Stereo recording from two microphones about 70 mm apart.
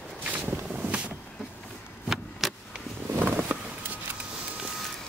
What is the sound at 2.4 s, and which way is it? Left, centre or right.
Vehicle, centre.